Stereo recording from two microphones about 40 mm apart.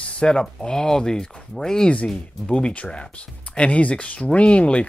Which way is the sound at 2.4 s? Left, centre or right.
Left.